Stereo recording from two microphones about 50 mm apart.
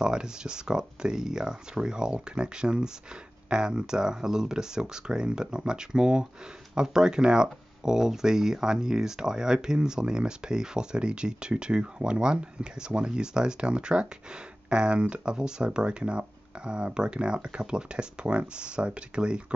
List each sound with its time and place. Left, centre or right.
0.0 s speech: centre